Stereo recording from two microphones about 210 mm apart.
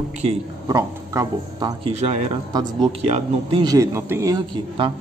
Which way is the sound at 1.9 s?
30° right (ahead or behind).